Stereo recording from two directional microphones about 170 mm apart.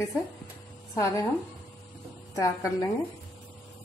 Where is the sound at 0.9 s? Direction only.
15° left (ahead or behind).